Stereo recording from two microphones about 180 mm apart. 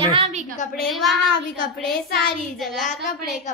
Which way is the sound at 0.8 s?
Centre (ahead or behind).